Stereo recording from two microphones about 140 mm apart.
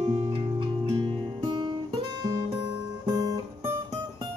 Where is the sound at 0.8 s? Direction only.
30° right (ahead or behind).